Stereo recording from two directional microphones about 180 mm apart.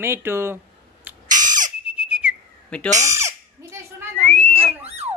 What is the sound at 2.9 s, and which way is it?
Alarm, 15° right (ahead or behind).